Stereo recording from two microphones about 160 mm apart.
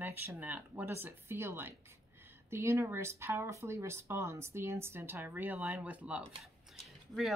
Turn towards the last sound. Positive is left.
turn(degrees=0)  # may be behind; listen again after turning